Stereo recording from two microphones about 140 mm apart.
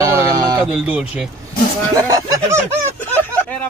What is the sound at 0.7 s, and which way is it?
Speech, 10° right (ahead or behind).